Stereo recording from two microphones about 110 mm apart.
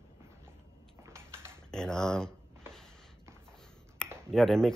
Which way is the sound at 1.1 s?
25° right (ahead or behind).